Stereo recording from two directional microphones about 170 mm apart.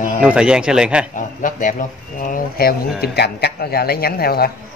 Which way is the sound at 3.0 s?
70° left (ahead or behind).